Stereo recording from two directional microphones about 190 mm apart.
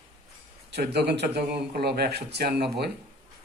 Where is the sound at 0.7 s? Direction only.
60° right (ahead or behind).